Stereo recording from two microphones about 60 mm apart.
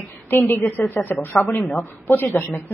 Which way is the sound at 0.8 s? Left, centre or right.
Left.